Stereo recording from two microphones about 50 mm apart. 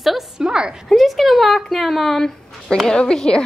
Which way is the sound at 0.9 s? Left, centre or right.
Centre.